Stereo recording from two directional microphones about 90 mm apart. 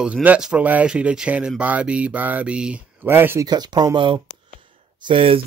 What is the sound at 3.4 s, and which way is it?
Speech, 50° right (ahead or behind).